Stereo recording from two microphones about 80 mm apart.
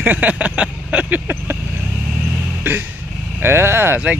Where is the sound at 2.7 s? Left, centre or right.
Right.